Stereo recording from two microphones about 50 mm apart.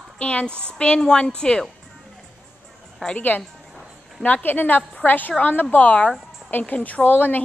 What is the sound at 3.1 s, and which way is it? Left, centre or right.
A woman's voice, left.